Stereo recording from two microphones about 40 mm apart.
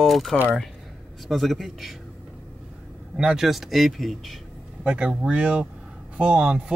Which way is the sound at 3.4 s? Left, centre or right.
Centre.